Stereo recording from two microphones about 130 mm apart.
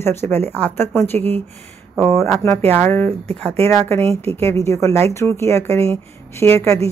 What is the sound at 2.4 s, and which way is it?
Speech, 15° left (ahead or behind).